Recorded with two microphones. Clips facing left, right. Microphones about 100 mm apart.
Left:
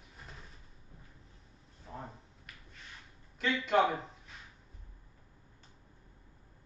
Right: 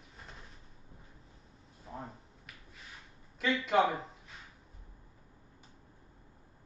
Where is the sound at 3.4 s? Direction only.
Centre (ahead or behind).